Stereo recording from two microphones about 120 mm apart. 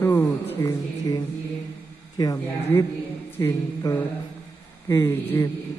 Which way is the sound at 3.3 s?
20° left (ahead or behind).